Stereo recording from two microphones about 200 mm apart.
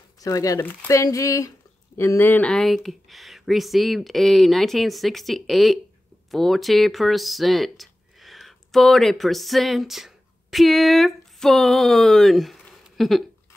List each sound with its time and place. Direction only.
0.2 s speech: 15° left (ahead or behind); by 13.2 s centre (ahead or behind)